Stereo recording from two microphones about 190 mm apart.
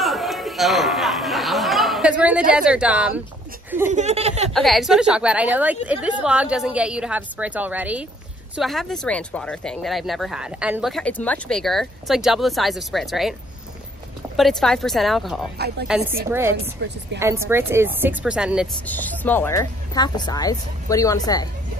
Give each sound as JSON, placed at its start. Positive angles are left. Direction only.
{"t": 0.0, "sound": "chatter", "side_deg": 0}
{"t": 2.5, "sound": "speech", "side_deg": -5}
{"t": 3.9, "sound": "speech", "side_deg": -35}
{"t": 4.6, "sound": "speech", "side_deg": 0}
{"t": 14.3, "sound": "speech", "side_deg": 0}
{"t": 15.5, "sound": "a woman's voice", "side_deg": -55}
{"t": 16.3, "sound": "speech", "side_deg": -15}
{"t": 16.8, "sound": "a woman's voice", "side_deg": -65}
{"t": 17.2, "sound": "speech", "side_deg": -15}
{"t": 18.9, "sound": "speech", "side_deg": 10}